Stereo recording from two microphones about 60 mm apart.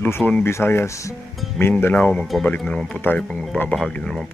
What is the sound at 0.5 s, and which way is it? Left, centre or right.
Speech, left.